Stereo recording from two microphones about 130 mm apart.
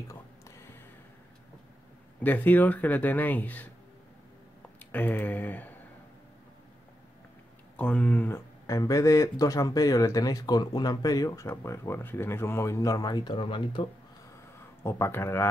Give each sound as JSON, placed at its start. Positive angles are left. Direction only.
{"t": 2.2, "sound": "speech", "side_deg": 15}
{"t": 4.9, "sound": "speech", "side_deg": 10}
{"t": 7.7, "sound": "speech", "side_deg": 10}
{"t": 8.6, "sound": "speech", "side_deg": 25}
{"t": 14.8, "sound": "speech", "side_deg": 20}